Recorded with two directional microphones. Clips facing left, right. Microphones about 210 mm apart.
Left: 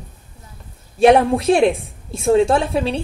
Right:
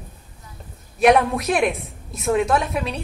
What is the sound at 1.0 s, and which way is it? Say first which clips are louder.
A woman's voice: left 4 dB; 30° left (ahead or behind).